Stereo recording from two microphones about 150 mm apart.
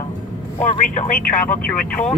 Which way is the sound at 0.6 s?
55° left (ahead or behind).